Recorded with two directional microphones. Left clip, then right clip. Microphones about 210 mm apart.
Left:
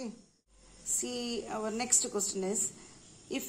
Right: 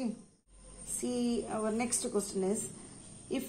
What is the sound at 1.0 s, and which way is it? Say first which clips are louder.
A woman's voice: right 3 dB; 25° left (ahead or behind).